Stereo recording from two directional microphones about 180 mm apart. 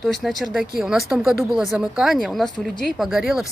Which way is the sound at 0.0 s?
Centre (ahead or behind).